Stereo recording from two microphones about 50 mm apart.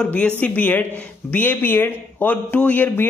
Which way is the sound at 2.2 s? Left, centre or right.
Left.